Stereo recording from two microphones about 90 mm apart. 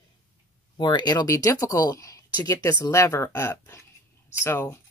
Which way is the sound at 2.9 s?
30° left (ahead or behind).